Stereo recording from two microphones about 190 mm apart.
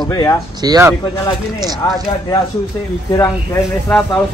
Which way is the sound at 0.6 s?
20° right (ahead or behind).